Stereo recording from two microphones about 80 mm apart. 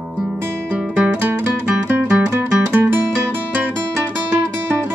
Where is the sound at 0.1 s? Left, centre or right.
Right.